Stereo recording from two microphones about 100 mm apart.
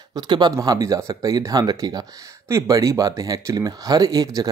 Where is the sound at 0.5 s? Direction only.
35° right (ahead or behind).